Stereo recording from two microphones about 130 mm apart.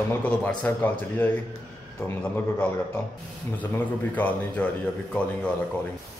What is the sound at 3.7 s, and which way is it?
Speech, 15° left (ahead or behind).